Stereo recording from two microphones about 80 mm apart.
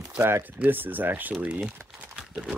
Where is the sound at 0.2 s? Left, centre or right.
Right.